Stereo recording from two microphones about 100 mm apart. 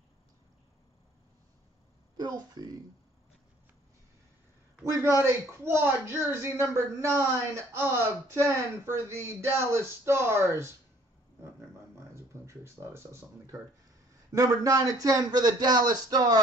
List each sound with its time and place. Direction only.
2.1 s speech: 45° right (ahead or behind)
5.2 s speech: 25° right (ahead or behind)
11.4 s a sound: 25° right (ahead or behind)
14.3 s a man's voice: 35° right (ahead or behind)